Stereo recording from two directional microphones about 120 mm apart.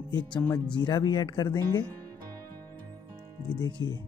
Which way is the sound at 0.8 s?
35° left (ahead or behind).